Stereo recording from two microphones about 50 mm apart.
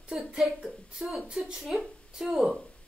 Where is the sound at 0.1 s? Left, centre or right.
Centre.